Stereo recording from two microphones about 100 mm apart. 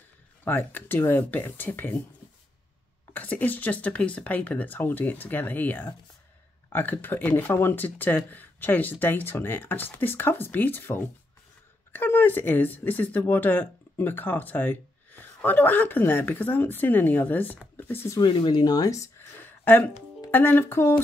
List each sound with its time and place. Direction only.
0.5 s speech: 20° left (ahead or behind)
3.1 s speech: 15° left (ahead or behind)
18.2 s speech: 50° left (ahead or behind); by 19.2 s 35° left (ahead or behind)
19.4 s a sound: 20° left (ahead or behind)
20.2 s speech: 20° left (ahead or behind)